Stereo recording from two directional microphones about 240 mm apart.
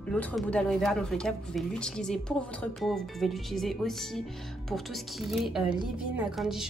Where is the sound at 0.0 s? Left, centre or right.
Centre.